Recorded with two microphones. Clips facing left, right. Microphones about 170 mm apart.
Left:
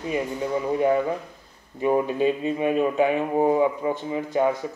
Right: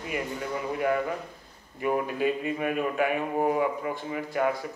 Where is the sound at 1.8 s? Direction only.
25° left (ahead or behind).